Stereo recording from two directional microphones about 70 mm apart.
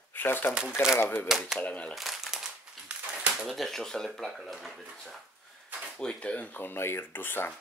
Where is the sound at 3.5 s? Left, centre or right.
Centre.